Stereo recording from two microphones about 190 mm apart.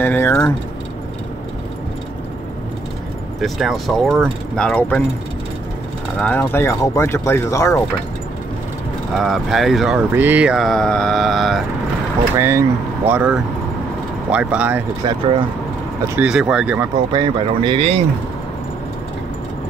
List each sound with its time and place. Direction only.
0.0 s speech: 10° left (ahead or behind)
3.3 s mantra: centre (ahead or behind)
6.1 s speech: 10° left (ahead or behind)
9.1 s mantra: centre (ahead or behind)
12.4 s speech: 15° right (ahead or behind)
15.0 s speech: 25° right (ahead or behind)
16.2 s mantra: 5° right (ahead or behind)
17.1 s speech: 25° right (ahead or behind)